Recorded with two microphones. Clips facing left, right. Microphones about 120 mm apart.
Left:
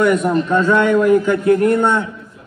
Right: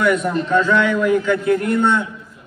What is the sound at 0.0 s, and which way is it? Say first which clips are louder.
A man's voice: left 3 dB; 45° left (ahead or behind).